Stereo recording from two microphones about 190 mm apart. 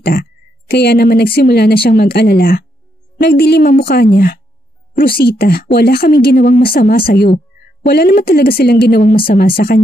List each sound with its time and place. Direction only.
0.0 s a woman's voice: 50° left (ahead or behind)
9.1 s speech: 30° left (ahead or behind)
9.6 s speech: 50° left (ahead or behind)